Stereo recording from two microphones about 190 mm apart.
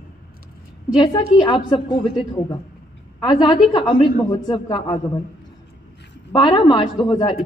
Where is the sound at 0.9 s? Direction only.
25° left (ahead or behind).